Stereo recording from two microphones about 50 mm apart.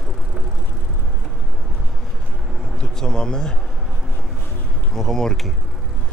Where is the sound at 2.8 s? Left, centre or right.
Centre.